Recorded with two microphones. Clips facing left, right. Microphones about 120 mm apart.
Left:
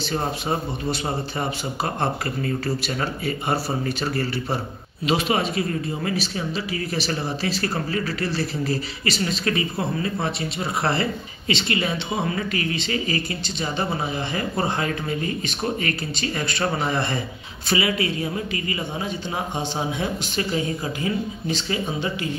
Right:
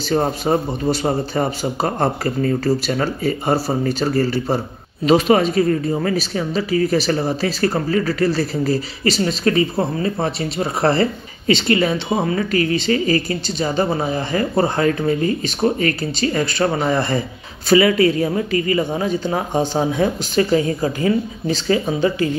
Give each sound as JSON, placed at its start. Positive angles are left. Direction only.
{"t": 0.1, "sound": "speech", "side_deg": -35}